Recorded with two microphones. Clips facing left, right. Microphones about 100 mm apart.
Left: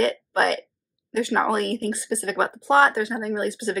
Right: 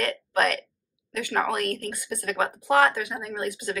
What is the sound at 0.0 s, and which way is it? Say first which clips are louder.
Speech: left 3 dB; 25° left (ahead or behind).